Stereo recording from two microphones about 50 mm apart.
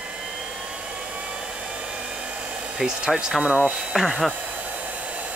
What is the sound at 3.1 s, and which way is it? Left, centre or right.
Speech, centre.